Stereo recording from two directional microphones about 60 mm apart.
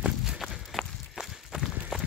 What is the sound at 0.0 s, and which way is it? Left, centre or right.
Run, centre.